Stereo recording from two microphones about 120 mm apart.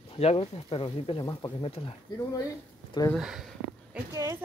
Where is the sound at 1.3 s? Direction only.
30° left (ahead or behind).